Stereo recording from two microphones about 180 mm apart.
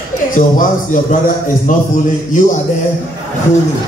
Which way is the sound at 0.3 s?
45° left (ahead or behind).